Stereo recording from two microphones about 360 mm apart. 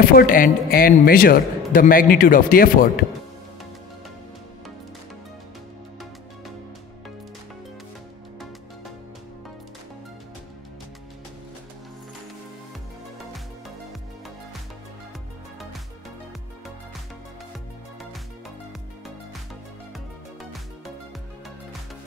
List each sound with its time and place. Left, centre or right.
0.0 s a man's voice: left